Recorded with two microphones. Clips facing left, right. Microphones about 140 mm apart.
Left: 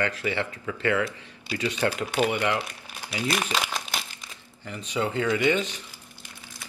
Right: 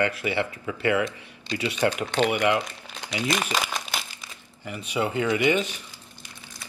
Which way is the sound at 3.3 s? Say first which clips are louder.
Right 1 dB; centre (ahead or behind).